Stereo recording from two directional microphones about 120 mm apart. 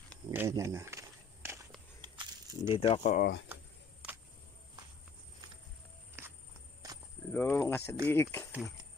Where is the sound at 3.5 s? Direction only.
15° right (ahead or behind).